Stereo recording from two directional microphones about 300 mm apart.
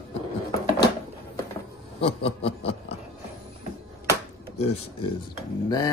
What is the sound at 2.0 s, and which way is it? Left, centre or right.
Snicker, centre.